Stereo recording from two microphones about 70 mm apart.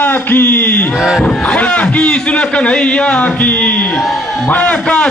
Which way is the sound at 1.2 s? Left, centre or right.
Centre.